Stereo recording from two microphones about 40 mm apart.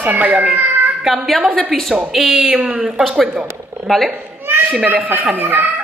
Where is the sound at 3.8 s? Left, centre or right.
Centre.